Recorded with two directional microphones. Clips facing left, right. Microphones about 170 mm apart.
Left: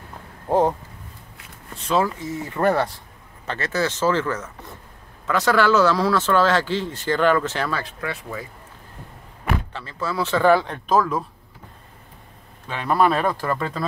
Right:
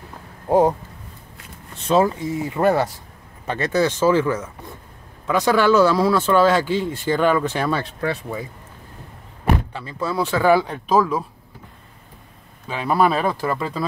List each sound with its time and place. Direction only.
0.5 s speech: 10° right (ahead or behind)
1.9 s speech: 25° right (ahead or behind)
2.3 s speech: 10° right (ahead or behind)
7.8 s speech: 30° right (ahead or behind)
9.7 s speech: 15° right (ahead or behind)
10.3 s speech: 5° right (ahead or behind)
12.6 s speech: 5° right (ahead or behind)